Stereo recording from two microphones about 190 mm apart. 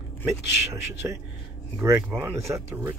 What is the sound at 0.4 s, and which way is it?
Speech, 65° left (ahead or behind).